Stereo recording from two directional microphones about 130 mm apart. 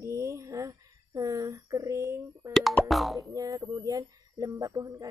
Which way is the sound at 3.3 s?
25° right (ahead or behind).